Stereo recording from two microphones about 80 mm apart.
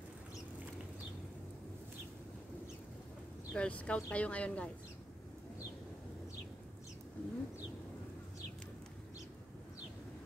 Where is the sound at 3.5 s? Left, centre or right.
Centre.